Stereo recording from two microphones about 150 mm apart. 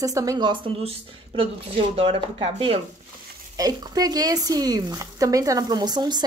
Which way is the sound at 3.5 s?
25° right (ahead or behind).